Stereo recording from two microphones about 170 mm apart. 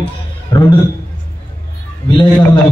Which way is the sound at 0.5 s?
25° left (ahead or behind).